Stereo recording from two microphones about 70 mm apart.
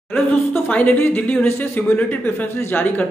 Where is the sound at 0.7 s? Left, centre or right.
Left.